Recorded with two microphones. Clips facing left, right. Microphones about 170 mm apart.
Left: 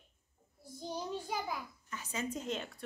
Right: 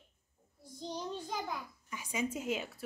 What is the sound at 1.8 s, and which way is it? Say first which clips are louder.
A woman's voice: right 3 dB; 10° right (ahead or behind).